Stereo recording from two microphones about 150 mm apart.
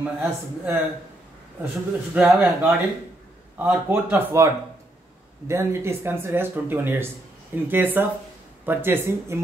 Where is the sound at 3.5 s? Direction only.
10° right (ahead or behind).